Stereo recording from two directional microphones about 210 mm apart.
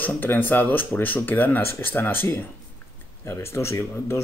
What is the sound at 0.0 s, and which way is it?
Speech, 10° left (ahead or behind).